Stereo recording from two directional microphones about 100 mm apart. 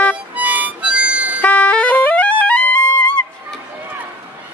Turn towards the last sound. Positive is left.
turn(degrees=10)  # may be behind; listen again after turning